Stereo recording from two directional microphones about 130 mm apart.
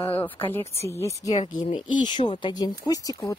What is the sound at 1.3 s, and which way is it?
Speech, 65° left (ahead or behind).